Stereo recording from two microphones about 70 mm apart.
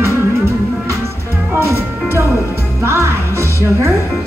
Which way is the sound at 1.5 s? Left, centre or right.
Right.